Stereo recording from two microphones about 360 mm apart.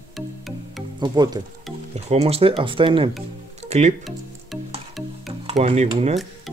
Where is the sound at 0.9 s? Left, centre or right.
Centre.